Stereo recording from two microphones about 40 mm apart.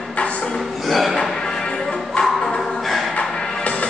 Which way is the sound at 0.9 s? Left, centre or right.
Centre.